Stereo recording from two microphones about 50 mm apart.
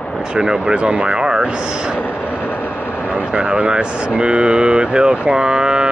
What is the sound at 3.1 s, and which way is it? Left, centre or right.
Speech, right.